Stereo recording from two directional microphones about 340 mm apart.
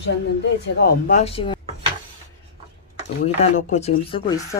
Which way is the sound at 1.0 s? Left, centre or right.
Centre.